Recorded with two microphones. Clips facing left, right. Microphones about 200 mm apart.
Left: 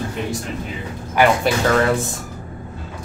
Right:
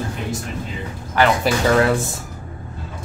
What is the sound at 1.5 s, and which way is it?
Speech, centre (ahead or behind).